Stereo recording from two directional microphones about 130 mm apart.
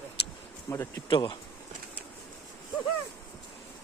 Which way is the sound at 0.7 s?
25° left (ahead or behind).